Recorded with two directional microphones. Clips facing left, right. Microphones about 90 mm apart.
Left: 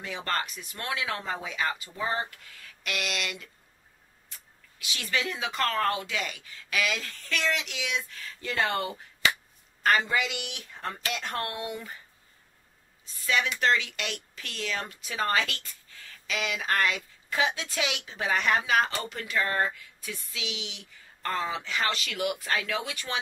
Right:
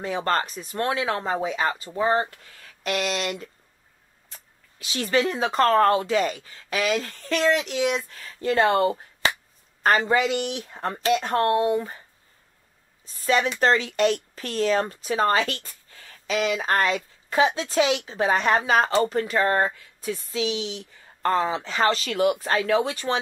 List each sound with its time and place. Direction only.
0.0 s speech: 35° right (ahead or behind)
13.0 s speech: 35° right (ahead or behind)